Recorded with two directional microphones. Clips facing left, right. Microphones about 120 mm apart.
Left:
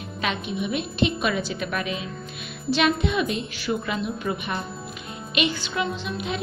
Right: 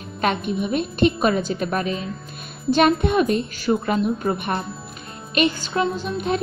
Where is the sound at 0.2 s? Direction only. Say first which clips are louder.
Right 5 dB; 50° right (ahead or behind).